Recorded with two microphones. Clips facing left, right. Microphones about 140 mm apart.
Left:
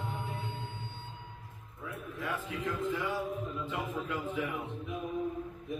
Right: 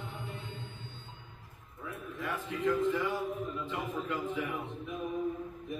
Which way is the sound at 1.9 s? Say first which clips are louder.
Even; centre (ahead or behind).